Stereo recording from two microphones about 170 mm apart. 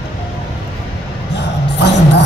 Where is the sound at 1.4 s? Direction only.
90° left.